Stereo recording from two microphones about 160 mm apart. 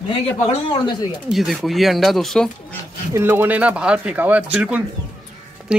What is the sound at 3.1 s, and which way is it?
Speech, 15° right (ahead or behind).